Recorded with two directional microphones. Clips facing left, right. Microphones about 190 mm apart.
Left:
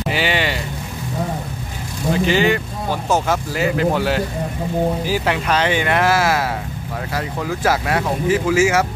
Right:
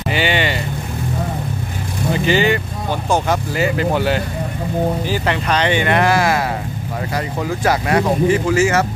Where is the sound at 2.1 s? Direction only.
Centre (ahead or behind).